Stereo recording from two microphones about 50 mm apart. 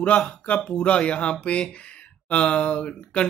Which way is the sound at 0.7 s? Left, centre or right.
Left.